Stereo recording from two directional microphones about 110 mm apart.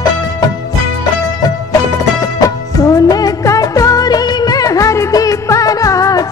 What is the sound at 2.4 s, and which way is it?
Music of bollywood, 35° left (ahead or behind).